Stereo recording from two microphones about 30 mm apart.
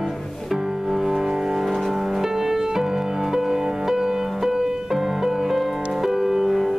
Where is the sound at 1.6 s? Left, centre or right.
Centre.